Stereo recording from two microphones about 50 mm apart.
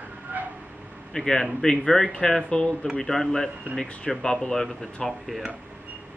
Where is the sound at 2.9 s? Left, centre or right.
Centre.